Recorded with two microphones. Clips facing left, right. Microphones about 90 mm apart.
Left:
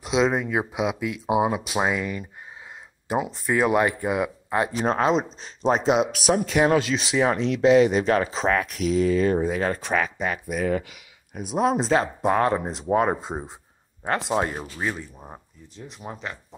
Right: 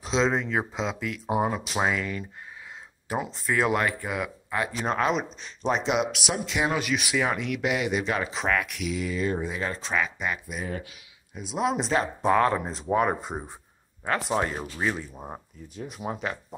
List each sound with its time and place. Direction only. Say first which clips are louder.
0.0 s speech: left 3 dB; 5° left (ahead or behind); by 6.8 s 45° left (ahead or behind)
6.8 s speech: left 4 dB; 25° left (ahead or behind)
10.5 s speech: left 9 dB; 65° left (ahead or behind)
11.3 s speech: left 4 dB; 45° left (ahead or behind)
12.2 s speech: left 1 dB; 20° left (ahead or behind)
14.6 s speech: even; centre (ahead or behind)
15.1 s speech: right 4 dB; 15° right (ahead or behind)